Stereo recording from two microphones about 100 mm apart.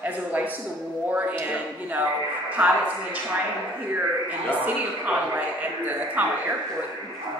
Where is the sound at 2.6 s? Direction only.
15° right (ahead or behind).